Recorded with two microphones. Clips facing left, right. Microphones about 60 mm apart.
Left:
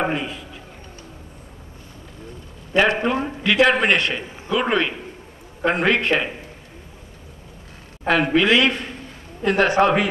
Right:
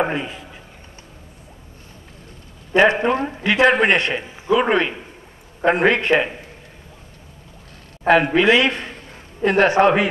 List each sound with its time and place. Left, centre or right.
0.0 s a sound: right
2.7 s a man's voice: right
8.1 s speech: right